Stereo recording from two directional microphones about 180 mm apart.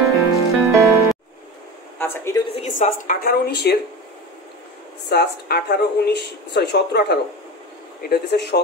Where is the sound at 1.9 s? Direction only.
15° left (ahead or behind).